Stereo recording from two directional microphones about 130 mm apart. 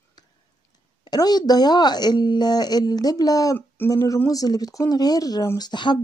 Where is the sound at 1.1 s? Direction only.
30° left (ahead or behind).